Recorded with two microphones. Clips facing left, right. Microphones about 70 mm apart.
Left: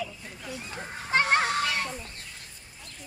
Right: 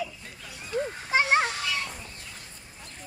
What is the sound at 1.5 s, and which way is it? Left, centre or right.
Children playing, left.